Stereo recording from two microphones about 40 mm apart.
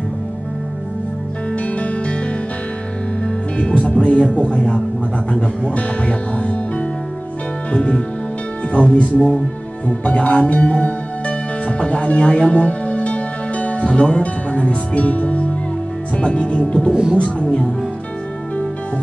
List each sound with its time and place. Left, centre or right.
1.5 s music: left
3.3 s speech: left
5.8 s speech: left
7.7 s speech: left
11.8 s music: left
13.8 s speech: left
16.9 s speech: centre
17.2 s speech: left